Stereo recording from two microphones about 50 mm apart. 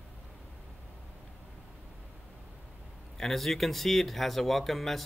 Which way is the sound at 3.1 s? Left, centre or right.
Centre.